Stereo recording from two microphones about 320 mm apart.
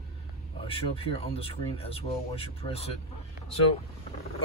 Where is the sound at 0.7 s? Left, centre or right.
Centre.